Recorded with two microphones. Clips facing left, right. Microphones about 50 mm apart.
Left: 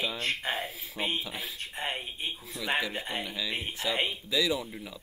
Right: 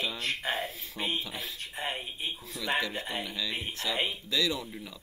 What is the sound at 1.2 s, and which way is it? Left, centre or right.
Speech, centre.